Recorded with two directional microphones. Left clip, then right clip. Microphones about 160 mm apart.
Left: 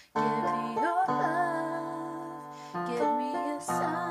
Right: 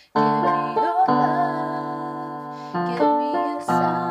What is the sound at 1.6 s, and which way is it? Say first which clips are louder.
Music: right 7 dB; 20° right (ahead or behind).